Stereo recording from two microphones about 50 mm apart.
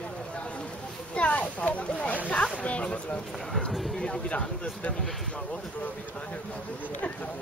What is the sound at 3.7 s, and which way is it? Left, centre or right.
Speech, centre.